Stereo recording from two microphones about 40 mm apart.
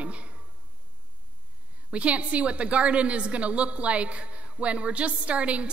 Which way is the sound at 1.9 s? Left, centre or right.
Right.